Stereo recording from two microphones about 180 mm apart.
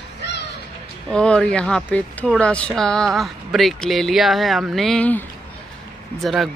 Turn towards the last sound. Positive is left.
turn(degrees=0)  # may be behind; listen again after turning